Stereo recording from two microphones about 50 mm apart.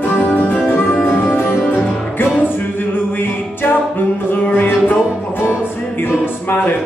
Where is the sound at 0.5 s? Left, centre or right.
Left.